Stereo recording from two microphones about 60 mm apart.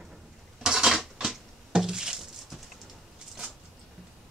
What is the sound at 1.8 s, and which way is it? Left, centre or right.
Patter, centre.